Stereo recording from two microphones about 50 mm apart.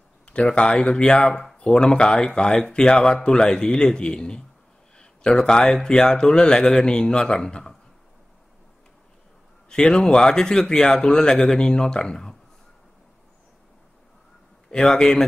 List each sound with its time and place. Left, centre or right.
0.3 s speech: left
9.7 s speech: centre
14.7 s speech: centre